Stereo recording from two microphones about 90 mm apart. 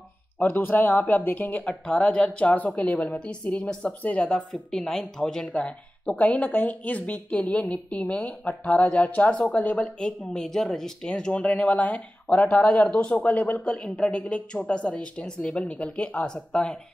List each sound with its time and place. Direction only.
0.4 s a woman's voice: 20° left (ahead or behind)